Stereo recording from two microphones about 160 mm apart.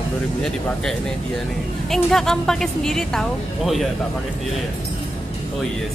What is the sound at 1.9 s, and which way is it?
A woman's voice, 5° left (ahead or behind).